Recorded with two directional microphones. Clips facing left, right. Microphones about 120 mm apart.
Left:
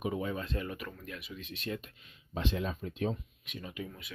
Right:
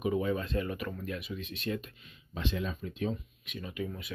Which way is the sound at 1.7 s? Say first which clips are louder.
Right 3 dB; 10° left (ahead or behind).